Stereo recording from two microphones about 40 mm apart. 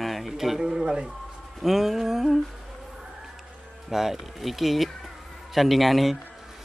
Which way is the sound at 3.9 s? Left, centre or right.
Centre.